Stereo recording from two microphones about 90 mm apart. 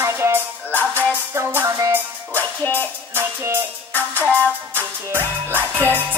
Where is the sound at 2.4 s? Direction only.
20° left (ahead or behind).